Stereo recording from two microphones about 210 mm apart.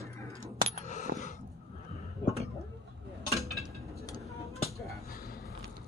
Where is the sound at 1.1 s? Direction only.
35° left (ahead or behind).